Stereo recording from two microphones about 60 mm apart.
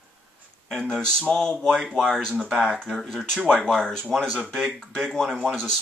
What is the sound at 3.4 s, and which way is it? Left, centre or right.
Speech, right.